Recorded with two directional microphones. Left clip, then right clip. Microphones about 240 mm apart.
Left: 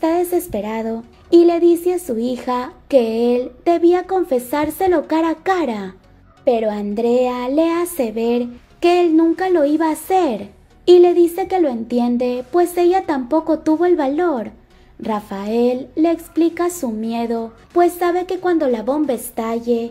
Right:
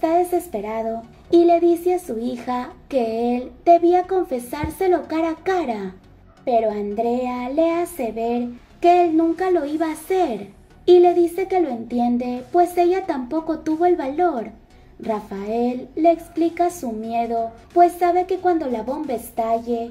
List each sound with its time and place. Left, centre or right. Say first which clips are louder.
0.0 s speech: left 1 dB; left